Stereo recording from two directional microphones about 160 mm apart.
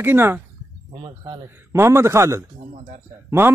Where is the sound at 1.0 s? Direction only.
30° right (ahead or behind).